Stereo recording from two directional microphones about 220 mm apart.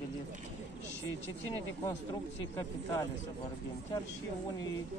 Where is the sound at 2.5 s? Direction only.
15° left (ahead or behind).